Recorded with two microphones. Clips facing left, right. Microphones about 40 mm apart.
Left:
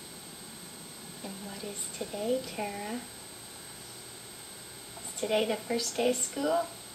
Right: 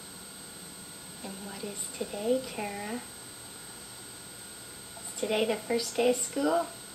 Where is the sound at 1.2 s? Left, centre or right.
Centre.